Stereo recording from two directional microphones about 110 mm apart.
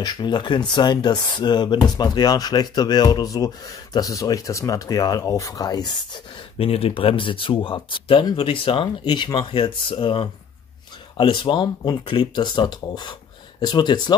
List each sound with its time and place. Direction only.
0.0 s speech: 40° left (ahead or behind)
6.6 s speech: 60° left (ahead or behind); by 14.1 s 45° left (ahead or behind)